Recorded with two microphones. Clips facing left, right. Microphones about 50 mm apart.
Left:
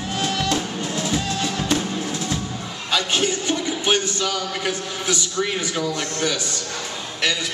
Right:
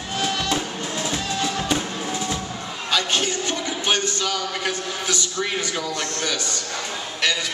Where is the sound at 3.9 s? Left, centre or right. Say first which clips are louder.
Left 1 dB; centre.